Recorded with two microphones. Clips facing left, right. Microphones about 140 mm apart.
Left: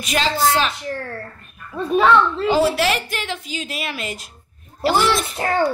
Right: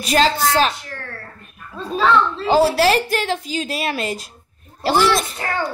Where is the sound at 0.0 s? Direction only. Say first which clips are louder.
Right 6 dB; 35° right (ahead or behind).